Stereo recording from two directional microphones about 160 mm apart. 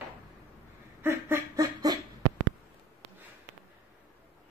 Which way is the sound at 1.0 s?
15° right (ahead or behind).